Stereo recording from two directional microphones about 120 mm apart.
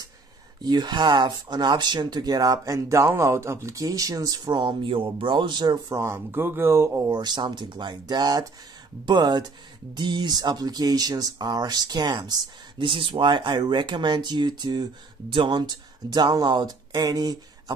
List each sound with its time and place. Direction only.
0.7 s speech: 35° right (ahead or behind)
7.1 s speech: 35° right (ahead or behind)